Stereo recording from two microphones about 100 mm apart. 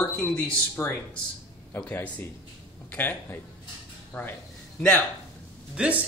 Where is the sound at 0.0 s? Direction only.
20° left (ahead or behind).